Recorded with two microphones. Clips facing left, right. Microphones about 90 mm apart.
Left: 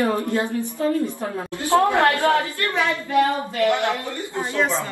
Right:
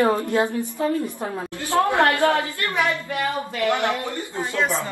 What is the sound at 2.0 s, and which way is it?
Speech, 20° right (ahead or behind).